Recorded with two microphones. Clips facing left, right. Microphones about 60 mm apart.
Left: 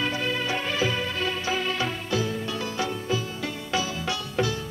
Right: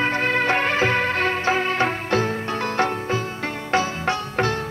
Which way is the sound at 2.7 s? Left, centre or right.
Right.